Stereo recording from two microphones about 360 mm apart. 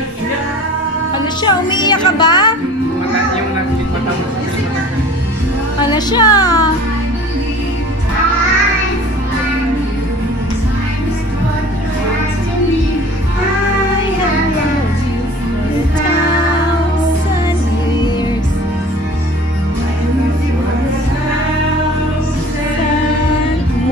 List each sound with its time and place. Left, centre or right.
1.1 s speech: centre
5.9 s speech: centre